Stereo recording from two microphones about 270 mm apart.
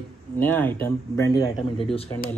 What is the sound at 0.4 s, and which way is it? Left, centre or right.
A man's voice, centre.